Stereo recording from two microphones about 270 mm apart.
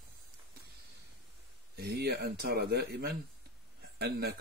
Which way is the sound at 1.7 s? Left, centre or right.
Right.